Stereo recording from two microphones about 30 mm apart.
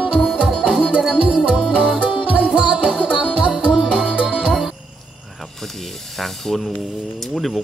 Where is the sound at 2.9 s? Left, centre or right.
Right.